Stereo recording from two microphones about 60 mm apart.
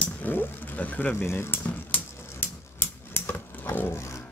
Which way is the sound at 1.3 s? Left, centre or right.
Left.